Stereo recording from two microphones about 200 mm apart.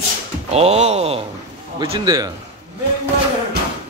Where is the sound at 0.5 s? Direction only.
30° right (ahead or behind).